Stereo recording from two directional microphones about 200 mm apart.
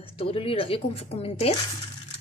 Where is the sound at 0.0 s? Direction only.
30° left (ahead or behind).